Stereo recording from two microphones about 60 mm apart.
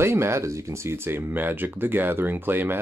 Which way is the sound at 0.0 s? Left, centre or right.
Right.